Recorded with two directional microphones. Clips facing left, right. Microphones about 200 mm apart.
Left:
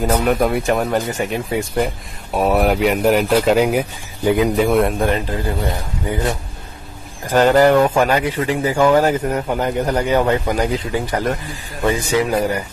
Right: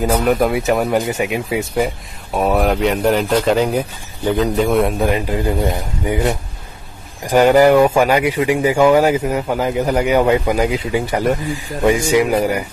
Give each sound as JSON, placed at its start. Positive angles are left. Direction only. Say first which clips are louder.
{"t": 0.0, "sound": "a man's voice", "louder": "right 1 dB", "side_deg": 0}
{"t": 5.3, "sound": "a man's voice", "louder": "right 4 dB", "side_deg": -15}